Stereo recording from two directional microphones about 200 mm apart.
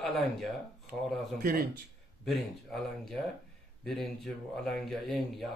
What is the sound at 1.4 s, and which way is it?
Speech, 45° right (ahead or behind).